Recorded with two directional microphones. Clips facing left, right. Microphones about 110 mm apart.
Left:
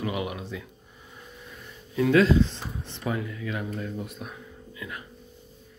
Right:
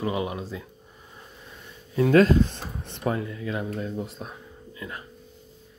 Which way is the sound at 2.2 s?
50° right (ahead or behind).